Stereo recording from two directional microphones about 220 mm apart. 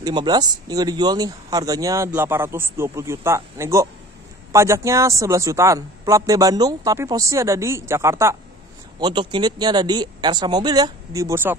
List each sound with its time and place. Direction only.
0.0 s speech: 20° right (ahead or behind)